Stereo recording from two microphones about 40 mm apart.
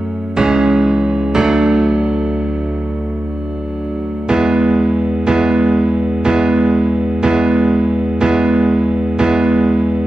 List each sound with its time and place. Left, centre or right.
0.4 s music: centre
4.3 s music: centre